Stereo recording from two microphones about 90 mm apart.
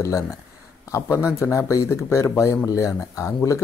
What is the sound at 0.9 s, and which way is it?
Speech, 30° left (ahead or behind).